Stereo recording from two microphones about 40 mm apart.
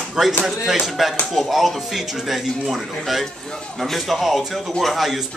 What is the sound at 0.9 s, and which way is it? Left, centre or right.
Speech, centre.